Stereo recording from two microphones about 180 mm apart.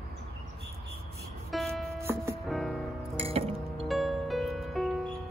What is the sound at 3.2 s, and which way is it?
Music, 35° right (ahead or behind).